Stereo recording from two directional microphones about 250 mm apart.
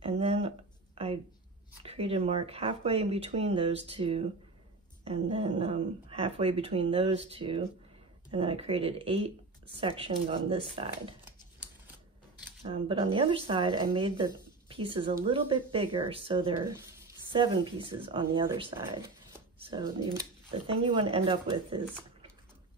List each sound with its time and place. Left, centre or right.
0.0 s a sound: right
1.8 s speech: right
12.6 s speech: right